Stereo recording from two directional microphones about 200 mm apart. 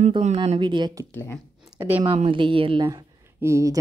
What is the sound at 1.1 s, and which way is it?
Speech, 10° left (ahead or behind).